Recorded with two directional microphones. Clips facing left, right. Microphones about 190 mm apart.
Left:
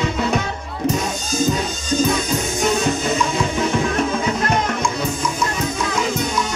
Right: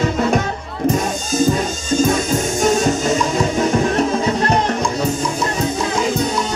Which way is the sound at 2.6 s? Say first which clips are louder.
Right 3 dB; 45° right (ahead or behind).